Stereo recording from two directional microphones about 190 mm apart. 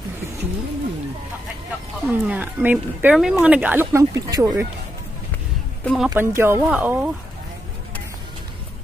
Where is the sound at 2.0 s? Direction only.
10° right (ahead or behind).